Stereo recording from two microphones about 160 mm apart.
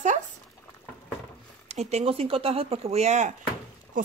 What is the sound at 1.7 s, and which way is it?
Speech, 40° right (ahead or behind).